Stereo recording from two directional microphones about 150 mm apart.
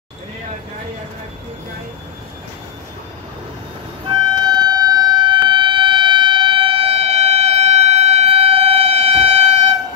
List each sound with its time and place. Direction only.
4.1 s music: 30° right (ahead or behind)